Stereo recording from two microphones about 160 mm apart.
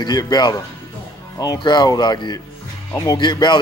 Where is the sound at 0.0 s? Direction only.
25° left (ahead or behind).